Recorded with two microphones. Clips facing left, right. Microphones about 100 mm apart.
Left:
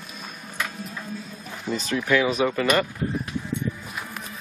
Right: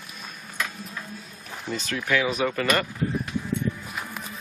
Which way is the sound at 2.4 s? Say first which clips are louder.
Left 3 dB; 15° left (ahead or behind).